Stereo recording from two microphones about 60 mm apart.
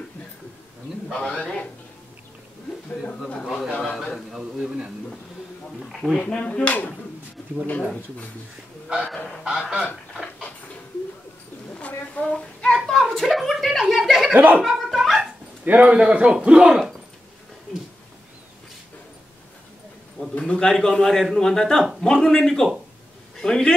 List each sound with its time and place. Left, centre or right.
1.1 s speech: centre
3.4 s a man's voice: centre
4.4 s a man's voice: centre
6.2 s speech: centre
8.8 s a man's voice: centre
12.2 s a sound: centre
14.3 s speech: right
14.6 s a sound: centre
15.6 s a man's voice: right
20.3 s a man's voice: centre